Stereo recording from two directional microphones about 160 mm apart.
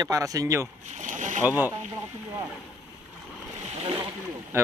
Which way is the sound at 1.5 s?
10° right (ahead or behind).